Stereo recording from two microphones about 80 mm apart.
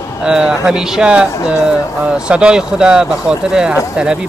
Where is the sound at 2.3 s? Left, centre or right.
Centre.